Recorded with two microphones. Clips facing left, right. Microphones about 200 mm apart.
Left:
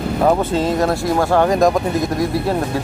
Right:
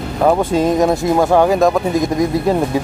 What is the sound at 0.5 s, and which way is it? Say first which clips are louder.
Speech: right 3 dB; 15° right (ahead or behind).